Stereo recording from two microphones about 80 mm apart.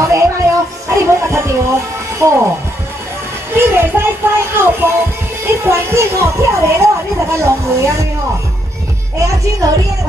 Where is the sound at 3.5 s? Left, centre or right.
Right.